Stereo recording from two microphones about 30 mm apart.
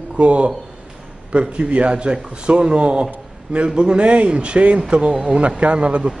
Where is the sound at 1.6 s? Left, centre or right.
Right.